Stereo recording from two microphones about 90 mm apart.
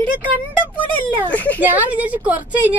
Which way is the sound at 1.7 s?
15° right (ahead or behind).